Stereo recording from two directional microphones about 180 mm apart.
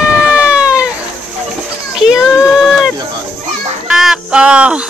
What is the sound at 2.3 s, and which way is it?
Run, centre (ahead or behind).